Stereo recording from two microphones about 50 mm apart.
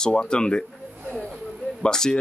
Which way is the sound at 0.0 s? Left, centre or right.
Centre.